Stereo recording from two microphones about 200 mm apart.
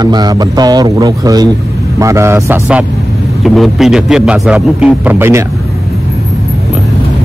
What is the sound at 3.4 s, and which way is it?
A man's voice, centre (ahead or behind).